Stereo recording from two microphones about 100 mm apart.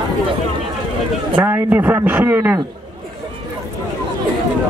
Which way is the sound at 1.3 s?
20° right (ahead or behind).